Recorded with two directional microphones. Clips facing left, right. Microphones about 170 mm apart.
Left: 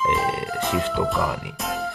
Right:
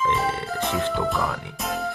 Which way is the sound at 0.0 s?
Centre (ahead or behind).